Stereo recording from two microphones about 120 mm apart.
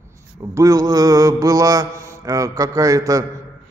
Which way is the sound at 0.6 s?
30° right (ahead or behind).